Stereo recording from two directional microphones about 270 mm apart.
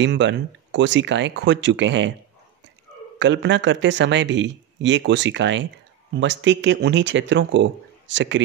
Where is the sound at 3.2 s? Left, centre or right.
Right.